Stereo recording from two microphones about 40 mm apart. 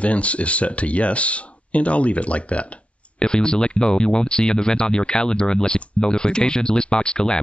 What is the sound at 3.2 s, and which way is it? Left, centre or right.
Speech, left.